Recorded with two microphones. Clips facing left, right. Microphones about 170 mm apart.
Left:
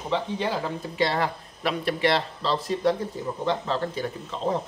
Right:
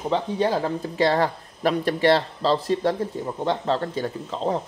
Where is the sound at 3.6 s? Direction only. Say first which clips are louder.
Right 3 dB; 30° right (ahead or behind).